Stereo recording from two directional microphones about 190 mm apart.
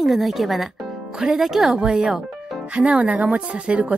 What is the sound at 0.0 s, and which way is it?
Speech, centre (ahead or behind).